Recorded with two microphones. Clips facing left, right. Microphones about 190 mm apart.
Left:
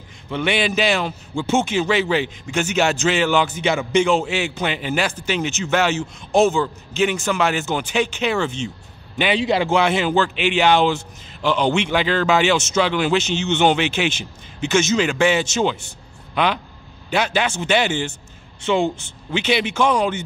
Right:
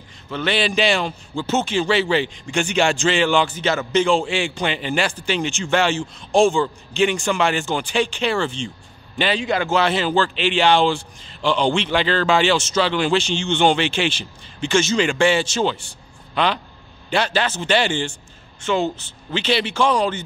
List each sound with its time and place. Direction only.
0.3 s a man's voice: 10° left (ahead or behind)
9.4 s speech: 25° left (ahead or behind)
9.8 s a man's voice: 10° left (ahead or behind)
17.1 s a man's voice: 10° left (ahead or behind)
19.3 s a man's voice: 10° left (ahead or behind)